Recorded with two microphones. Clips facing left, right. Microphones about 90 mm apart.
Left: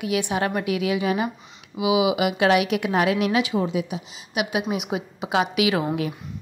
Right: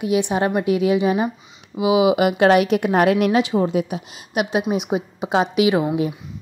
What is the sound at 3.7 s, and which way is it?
Speech, 45° right (ahead or behind).